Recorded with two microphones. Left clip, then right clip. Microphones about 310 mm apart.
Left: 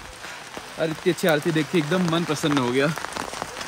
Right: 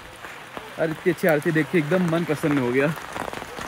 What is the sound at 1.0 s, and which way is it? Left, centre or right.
Speech, centre.